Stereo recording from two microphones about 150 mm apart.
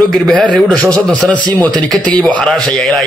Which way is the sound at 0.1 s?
Centre (ahead or behind).